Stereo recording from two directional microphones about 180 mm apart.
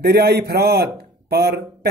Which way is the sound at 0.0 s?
65° right (ahead or behind).